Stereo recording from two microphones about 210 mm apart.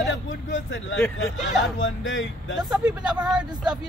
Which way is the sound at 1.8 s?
65° left (ahead or behind).